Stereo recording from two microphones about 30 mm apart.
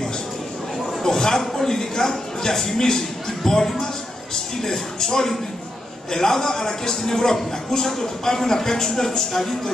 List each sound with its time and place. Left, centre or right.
1.0 s speech: centre